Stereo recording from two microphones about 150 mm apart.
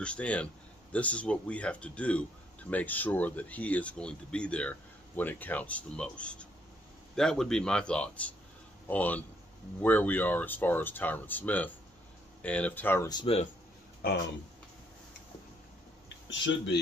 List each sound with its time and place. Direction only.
0.0 s speech: 10° left (ahead or behind)
13.1 s speech: 35° left (ahead or behind)